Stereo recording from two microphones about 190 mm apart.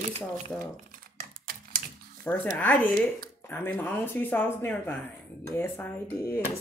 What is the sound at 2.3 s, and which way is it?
Speech, 10° left (ahead or behind).